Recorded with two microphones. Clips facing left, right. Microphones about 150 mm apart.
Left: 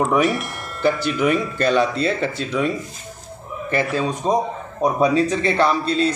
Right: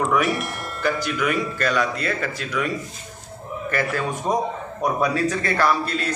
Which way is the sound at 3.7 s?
20° left (ahead or behind).